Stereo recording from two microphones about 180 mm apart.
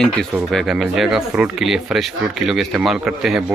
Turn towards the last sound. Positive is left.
turn(degrees=0)  # may be behind; listen again after turning